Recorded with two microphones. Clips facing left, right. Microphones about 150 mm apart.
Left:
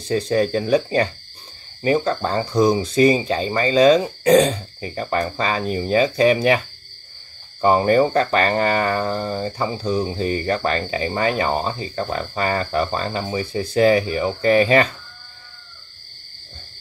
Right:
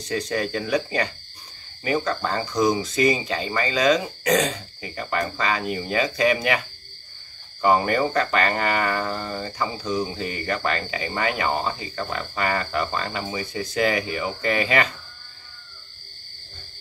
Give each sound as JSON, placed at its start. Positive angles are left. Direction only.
{"t": 0.1, "sound": "speech", "side_deg": 30}
{"t": 7.6, "sound": "speech", "side_deg": 30}